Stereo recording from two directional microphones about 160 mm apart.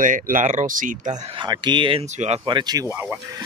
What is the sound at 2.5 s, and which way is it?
Speech, 25° right (ahead or behind).